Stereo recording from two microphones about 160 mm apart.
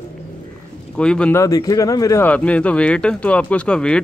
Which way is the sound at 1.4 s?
20° left (ahead or behind).